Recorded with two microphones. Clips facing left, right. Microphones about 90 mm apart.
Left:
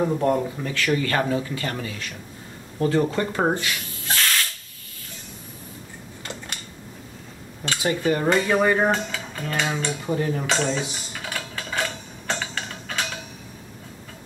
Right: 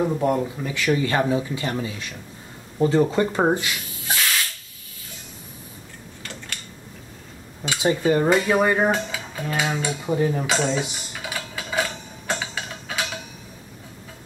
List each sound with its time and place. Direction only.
0.0 s speech: 5° right (ahead or behind)
0.7 s dishes: 20° right (ahead or behind)
7.8 s dishes: 15° right (ahead or behind)
11.1 s a sound: 5° right (ahead or behind)
12.3 s mechanisms: 5° right (ahead or behind)